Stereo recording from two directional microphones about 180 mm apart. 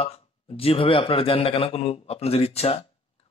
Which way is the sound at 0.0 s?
30° left (ahead or behind).